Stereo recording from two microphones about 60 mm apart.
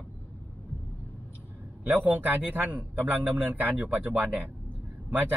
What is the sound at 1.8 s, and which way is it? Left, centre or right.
A man's voice, right.